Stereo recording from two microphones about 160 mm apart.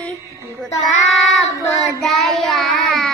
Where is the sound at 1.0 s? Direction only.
Centre (ahead or behind).